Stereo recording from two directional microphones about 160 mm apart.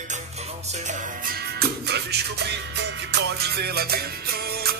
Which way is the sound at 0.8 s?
65° right (ahead or behind).